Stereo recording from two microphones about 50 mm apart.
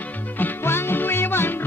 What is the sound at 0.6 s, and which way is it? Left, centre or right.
Music, left.